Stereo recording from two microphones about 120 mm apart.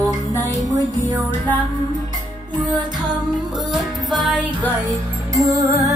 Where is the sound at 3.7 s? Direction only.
Centre (ahead or behind).